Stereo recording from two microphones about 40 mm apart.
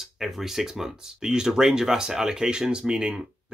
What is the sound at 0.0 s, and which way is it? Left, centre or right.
Speech, centre.